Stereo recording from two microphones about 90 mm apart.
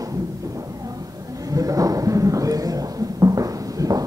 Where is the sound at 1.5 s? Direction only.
40° right (ahead or behind).